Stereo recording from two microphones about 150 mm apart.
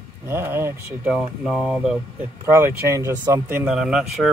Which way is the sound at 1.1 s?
5° right (ahead or behind).